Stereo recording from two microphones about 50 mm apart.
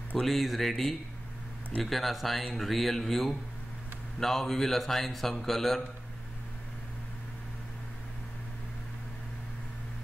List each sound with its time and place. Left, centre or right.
0.2 s a man's voice: centre